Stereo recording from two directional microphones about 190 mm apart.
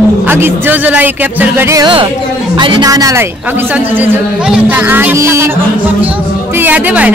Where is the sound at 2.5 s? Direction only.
25° right (ahead or behind).